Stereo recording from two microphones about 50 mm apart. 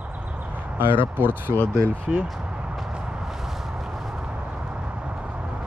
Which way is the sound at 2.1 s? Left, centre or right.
Centre.